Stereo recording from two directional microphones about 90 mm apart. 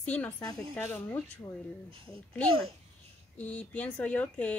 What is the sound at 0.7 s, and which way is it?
Speech, 25° left (ahead or behind).